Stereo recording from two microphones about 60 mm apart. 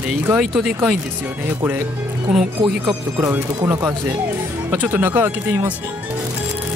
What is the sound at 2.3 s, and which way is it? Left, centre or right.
Speech, centre.